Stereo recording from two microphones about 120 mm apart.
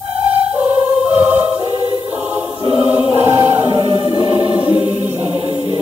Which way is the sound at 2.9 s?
20° right (ahead or behind).